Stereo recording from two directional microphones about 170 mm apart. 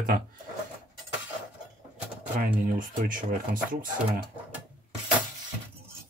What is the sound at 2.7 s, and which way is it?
Speech, 55° right (ahead or behind).